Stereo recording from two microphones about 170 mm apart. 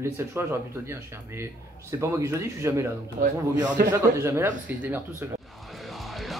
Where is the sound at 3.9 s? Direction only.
15° right (ahead or behind).